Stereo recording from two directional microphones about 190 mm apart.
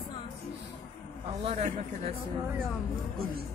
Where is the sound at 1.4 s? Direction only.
35° right (ahead or behind).